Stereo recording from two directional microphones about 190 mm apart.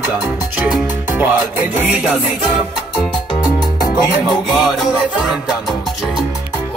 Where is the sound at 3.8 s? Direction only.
20° left (ahead or behind).